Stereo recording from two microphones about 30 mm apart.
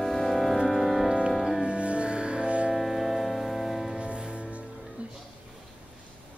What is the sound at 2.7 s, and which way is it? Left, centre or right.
Music, centre.